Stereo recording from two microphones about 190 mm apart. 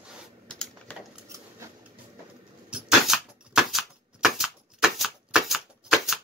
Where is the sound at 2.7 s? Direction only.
Centre (ahead or behind).